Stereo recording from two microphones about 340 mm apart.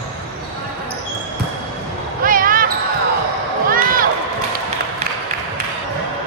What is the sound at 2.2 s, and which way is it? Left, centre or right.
Basketball bounce, right.